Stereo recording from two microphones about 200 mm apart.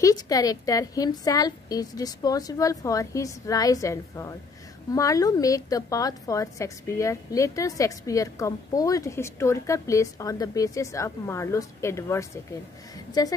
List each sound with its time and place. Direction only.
0.0 s a woman's voice: 20° left (ahead or behind)